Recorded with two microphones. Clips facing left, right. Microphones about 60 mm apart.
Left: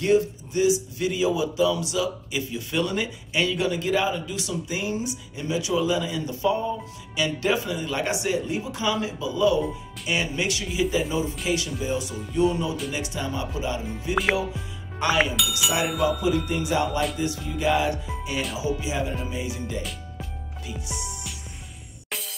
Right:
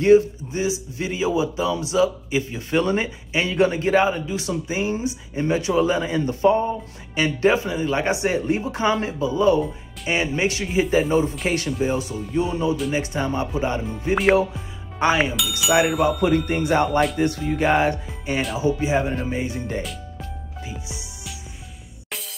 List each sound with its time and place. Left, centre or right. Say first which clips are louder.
0.0 s a man's voice: right 6 dB; right
12.4 s a man's voice: right 1 dB; right
15.0 s speech: right 3 dB; right
15.3 s speech: right 5 dB; centre
16.0 s music: right 4 dB; right
16.4 s a man's voice: right 5 dB; right
19.8 s music: right 3 dB; centre
22.1 s music: even; centre